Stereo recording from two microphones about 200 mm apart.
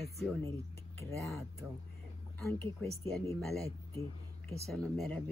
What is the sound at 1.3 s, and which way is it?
Speech, centre (ahead or behind).